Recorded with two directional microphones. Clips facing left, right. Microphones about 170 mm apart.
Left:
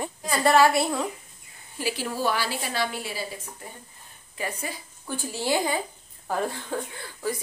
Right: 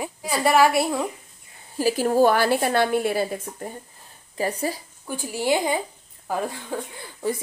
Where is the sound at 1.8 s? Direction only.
45° right (ahead or behind).